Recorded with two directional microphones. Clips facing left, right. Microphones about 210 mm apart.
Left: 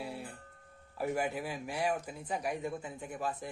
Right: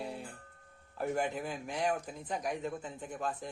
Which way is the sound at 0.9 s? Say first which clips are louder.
Even; 5° left (ahead or behind).